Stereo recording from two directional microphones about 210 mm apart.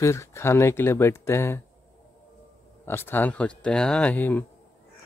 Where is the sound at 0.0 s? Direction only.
15° left (ahead or behind).